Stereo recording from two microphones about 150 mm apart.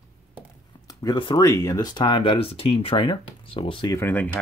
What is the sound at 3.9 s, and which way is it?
Speech, 10° left (ahead or behind).